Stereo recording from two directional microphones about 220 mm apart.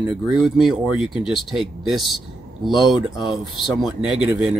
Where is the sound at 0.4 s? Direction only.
Centre (ahead or behind).